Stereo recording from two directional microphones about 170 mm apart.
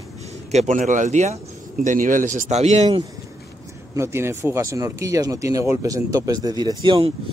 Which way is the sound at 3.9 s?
15° right (ahead or behind).